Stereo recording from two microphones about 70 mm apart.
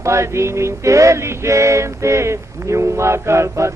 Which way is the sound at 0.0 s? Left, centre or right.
Right.